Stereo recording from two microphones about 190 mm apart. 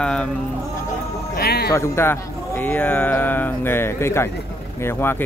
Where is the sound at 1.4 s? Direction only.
55° left (ahead or behind).